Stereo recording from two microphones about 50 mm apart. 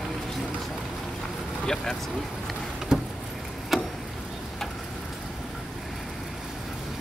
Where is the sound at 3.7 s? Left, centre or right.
Centre.